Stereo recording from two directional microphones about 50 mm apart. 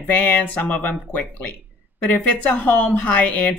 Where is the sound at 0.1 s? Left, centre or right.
Left.